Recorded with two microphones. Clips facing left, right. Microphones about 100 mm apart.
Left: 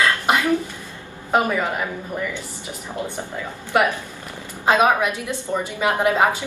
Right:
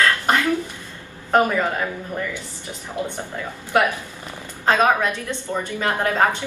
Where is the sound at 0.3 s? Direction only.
10° left (ahead or behind).